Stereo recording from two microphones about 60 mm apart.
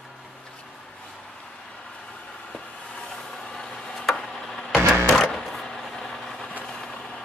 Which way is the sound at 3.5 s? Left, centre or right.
Centre.